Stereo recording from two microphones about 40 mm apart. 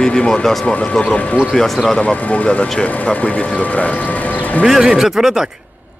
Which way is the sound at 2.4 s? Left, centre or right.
Left.